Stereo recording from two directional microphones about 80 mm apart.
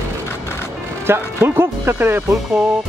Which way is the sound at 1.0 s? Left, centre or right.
Right.